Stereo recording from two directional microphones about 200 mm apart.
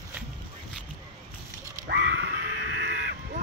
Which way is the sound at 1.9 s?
60° right (ahead or behind).